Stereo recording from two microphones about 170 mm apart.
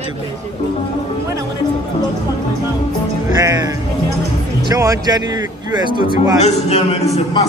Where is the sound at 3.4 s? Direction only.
20° right (ahead or behind).